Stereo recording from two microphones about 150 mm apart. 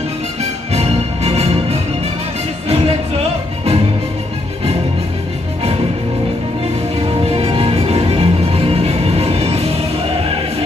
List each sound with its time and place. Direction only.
0.4 s music: 45° right (ahead or behind)
7.0 s music: 40° right (ahead or behind)